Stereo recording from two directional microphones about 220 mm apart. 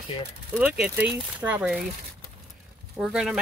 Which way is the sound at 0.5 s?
5° right (ahead or behind).